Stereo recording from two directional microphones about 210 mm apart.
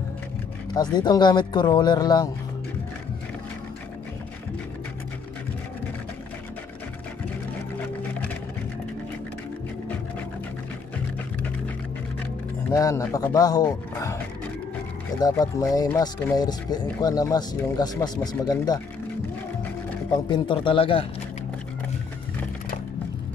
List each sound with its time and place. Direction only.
0.9 s speech: 20° left (ahead or behind)
12.7 s speech: 15° left (ahead or behind)
20.1 s speech: 20° left (ahead or behind)